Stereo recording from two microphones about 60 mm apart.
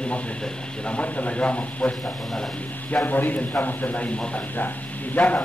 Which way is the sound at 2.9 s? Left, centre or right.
Left.